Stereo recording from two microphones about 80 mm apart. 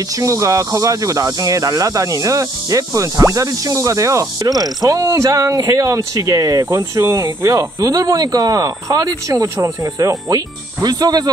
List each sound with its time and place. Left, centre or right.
0.2 s speech: right